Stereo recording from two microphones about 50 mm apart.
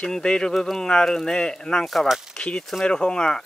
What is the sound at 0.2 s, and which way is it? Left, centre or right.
Speech, centre.